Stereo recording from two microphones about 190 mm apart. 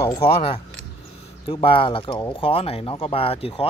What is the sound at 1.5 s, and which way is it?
Speech, 30° left (ahead or behind).